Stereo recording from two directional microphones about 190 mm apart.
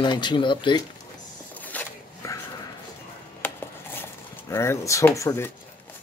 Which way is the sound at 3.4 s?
10° left (ahead or behind).